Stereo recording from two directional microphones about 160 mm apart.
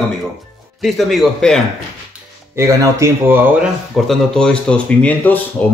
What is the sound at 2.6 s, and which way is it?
Speech, 20° right (ahead or behind).